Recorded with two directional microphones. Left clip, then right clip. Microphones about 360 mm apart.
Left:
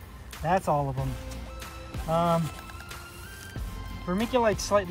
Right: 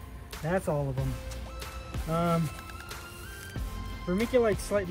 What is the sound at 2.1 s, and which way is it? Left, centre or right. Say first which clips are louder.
Speech: left 4 dB; centre.